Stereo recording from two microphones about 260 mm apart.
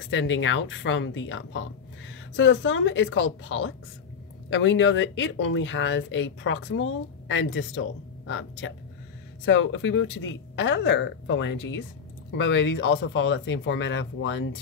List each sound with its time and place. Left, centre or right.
0.1 s speech: left